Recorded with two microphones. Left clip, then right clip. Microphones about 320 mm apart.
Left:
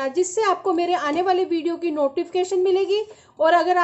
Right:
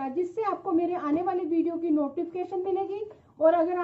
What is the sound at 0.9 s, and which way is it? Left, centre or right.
A woman's voice, left.